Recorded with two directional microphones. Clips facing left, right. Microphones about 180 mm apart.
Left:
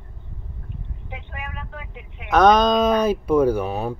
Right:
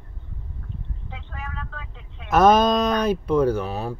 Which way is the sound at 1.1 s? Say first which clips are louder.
Left 2 dB; 15° left (ahead or behind).